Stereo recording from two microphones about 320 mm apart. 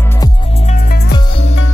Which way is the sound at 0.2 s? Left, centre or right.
Left.